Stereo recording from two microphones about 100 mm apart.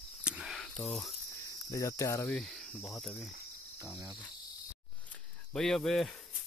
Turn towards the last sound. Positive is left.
turn(degrees=5)  # may be behind; listen again after turning